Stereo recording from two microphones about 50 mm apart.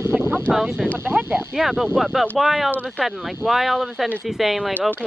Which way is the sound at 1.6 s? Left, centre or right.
Centre.